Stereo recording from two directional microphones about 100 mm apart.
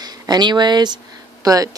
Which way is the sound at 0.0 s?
45° right (ahead or behind).